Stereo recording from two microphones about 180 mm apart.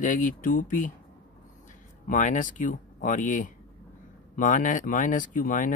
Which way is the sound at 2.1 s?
45° left (ahead or behind).